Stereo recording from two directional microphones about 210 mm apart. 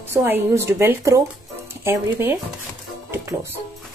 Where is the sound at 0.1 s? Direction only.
10° right (ahead or behind).